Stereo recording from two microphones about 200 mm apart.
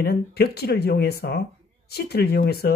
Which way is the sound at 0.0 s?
50° left (ahead or behind).